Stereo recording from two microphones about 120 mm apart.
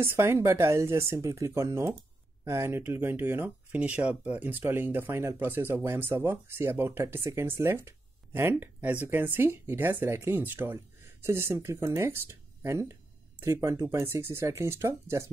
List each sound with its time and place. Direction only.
0.0 s speech: 20° right (ahead or behind)